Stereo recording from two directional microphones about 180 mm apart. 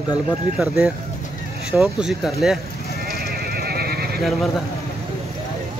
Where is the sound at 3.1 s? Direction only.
60° right (ahead or behind).